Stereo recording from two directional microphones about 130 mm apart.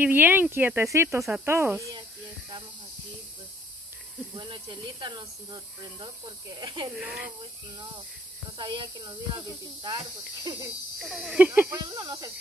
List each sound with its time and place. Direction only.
0.0 s speech: 15° right (ahead or behind)
4.4 s speech: 35° right (ahead or behind)
7.0 s speech: 5° right (ahead or behind)
8.5 s speech: 35° right (ahead or behind)
11.0 s speech: centre (ahead or behind)
11.3 s speech: 15° right (ahead or behind)
11.7 s speech: 30° right (ahead or behind)